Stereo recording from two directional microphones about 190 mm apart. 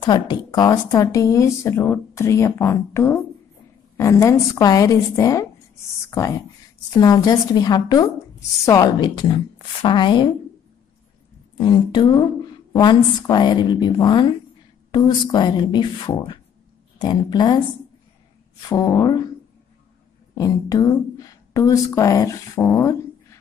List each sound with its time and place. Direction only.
0.0 s a woman's voice: 25° left (ahead or behind)
11.5 s a woman's voice: 25° left (ahead or behind)
18.7 s a woman's voice: 20° left (ahead or behind)
20.3 s speech: 20° left (ahead or behind)